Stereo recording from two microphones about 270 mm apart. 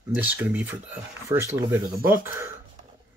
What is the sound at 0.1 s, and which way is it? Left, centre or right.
Speech, centre.